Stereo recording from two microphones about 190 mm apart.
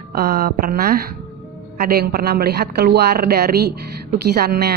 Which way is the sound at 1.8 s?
55° right (ahead or behind).